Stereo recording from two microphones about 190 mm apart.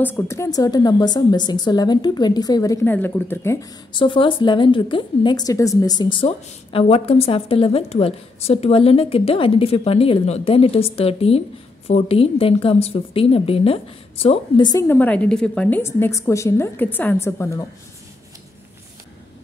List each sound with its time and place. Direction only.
0.0 s a woman's voice: 15° left (ahead or behind)
3.9 s a woman's voice: 25° left (ahead or behind)